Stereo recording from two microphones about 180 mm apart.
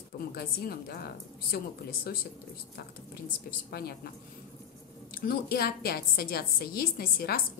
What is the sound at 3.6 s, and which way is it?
Speech, 60° left (ahead or behind).